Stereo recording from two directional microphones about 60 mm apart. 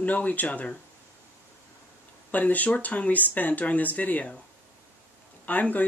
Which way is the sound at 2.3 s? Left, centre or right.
Left.